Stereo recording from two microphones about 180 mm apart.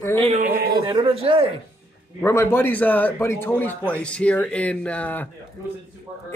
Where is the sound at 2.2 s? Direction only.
15° left (ahead or behind).